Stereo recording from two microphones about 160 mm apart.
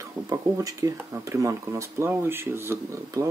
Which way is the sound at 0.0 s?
20° right (ahead or behind).